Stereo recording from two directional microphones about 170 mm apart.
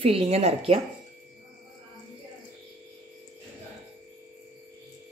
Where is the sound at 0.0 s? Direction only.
35° right (ahead or behind).